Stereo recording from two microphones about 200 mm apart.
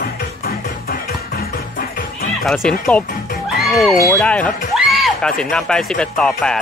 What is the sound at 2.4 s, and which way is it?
Speech, centre (ahead or behind).